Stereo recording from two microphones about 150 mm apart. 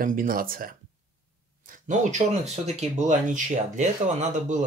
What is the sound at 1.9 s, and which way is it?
Speech, 50° right (ahead or behind).